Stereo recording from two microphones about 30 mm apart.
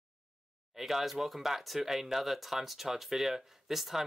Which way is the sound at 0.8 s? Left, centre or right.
Centre.